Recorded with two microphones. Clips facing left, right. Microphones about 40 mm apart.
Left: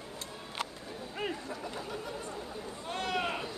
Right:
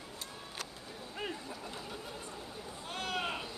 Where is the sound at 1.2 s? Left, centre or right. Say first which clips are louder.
Left 4 dB; centre.